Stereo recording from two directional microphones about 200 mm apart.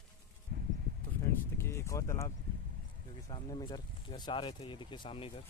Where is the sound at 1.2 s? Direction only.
15° left (ahead or behind).